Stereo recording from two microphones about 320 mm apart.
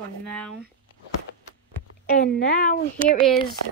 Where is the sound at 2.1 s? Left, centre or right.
Left.